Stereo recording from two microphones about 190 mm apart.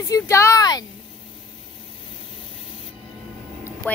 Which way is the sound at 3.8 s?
10° left (ahead or behind).